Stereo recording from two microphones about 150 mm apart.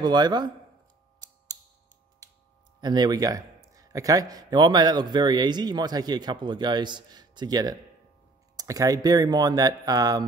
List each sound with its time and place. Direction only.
0.0 s speech: 30° right (ahead or behind)
2.8 s speech: 30° right (ahead or behind)